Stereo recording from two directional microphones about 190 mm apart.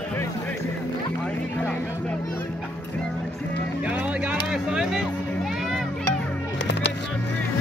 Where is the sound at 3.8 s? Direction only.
5° right (ahead or behind).